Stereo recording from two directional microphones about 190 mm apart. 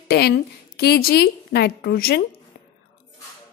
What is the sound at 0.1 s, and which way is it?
A woman's voice, 55° left (ahead or behind).